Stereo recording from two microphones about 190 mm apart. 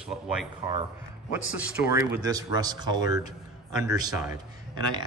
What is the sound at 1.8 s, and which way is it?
A man's voice, 10° right (ahead or behind).